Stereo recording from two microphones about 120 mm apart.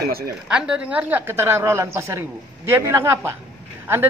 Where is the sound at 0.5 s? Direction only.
10° right (ahead or behind).